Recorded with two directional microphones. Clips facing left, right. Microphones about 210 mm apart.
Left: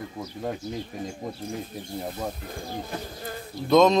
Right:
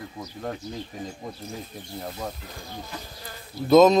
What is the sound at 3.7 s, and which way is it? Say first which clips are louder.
Speech: right 3 dB; 5° right (ahead or behind).